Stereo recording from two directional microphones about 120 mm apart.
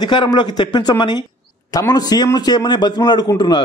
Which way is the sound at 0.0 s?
40° left (ahead or behind).